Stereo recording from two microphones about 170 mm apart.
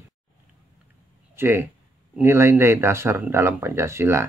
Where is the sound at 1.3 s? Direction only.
15° right (ahead or behind).